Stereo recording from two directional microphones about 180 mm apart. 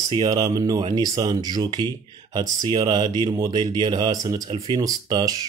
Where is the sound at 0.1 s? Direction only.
20° right (ahead or behind).